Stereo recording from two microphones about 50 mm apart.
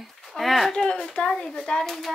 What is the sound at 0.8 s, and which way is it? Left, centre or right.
A child's voice, centre.